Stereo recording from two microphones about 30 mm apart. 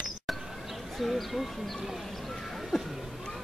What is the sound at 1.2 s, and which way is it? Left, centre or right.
Speech, centre.